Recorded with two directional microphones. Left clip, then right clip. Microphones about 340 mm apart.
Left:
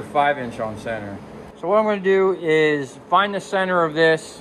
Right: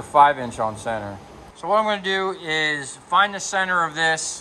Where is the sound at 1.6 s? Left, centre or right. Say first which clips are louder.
Left 2 dB; centre.